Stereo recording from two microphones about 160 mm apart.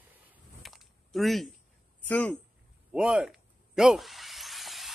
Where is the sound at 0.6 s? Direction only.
Centre (ahead or behind).